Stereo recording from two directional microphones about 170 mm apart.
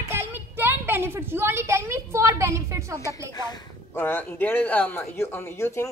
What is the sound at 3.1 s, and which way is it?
Speech, 25° left (ahead or behind).